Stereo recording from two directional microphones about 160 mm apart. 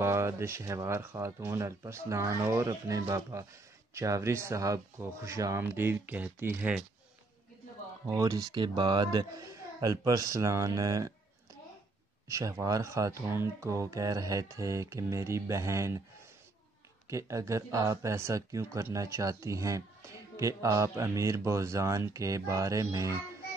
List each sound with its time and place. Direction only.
0.0 s speech: 15° right (ahead or behind)
8.1 s speech: 20° right (ahead or behind)
12.3 s speech: 20° right (ahead or behind)
17.1 s speech: 20° right (ahead or behind)